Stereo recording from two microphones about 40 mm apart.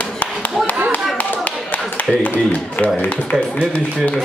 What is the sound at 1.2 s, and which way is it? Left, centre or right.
Clapping, left.